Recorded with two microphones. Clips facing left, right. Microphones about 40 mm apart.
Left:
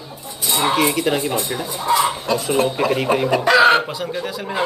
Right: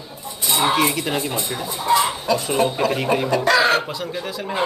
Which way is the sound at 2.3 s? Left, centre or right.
Centre.